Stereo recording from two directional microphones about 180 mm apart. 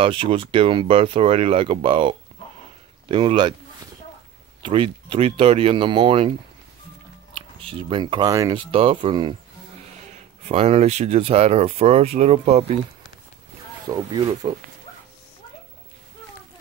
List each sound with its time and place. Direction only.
0.0 s speech: 30° right (ahead or behind)
4.6 s speech: 30° right (ahead or behind)
7.3 s speech: 30° right (ahead or behind)
8.7 s speech: 30° right (ahead or behind)
10.5 s speech: 35° right (ahead or behind)
13.8 s speech: 20° right (ahead or behind)